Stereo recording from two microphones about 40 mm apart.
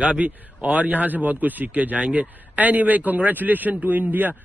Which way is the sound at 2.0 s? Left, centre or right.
Right.